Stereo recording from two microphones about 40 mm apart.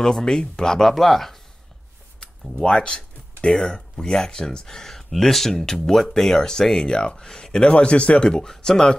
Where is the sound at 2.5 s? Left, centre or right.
Left.